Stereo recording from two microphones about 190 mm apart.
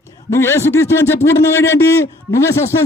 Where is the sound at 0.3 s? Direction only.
15° left (ahead or behind).